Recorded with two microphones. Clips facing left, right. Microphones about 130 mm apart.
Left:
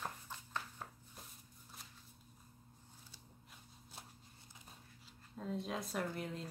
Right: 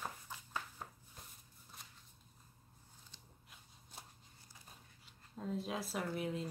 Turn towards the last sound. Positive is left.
turn(degrees=-5)  # may be behind; listen again after turning